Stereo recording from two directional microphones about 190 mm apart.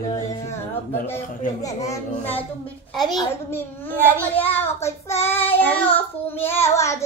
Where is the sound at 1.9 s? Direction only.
10° left (ahead or behind).